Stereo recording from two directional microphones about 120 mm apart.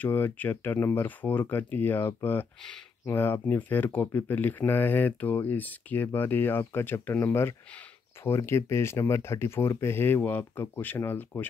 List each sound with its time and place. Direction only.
0.0 s speech: 15° left (ahead or behind)